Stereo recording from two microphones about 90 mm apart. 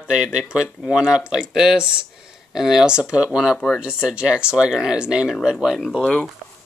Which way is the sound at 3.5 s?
5° left (ahead or behind).